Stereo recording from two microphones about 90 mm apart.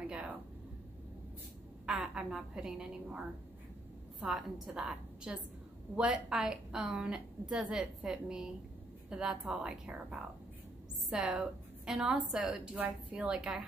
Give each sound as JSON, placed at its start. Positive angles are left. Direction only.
{"t": 0.0, "sound": "a sound", "side_deg": -15}
{"t": 1.9, "sound": "a woman's voice", "side_deg": -5}
{"t": 12.7, "sound": "speech", "side_deg": -20}
{"t": 13.2, "sound": "a woman's voice", "side_deg": -5}